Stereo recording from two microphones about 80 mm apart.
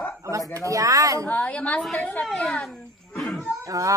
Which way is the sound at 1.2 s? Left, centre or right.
Centre.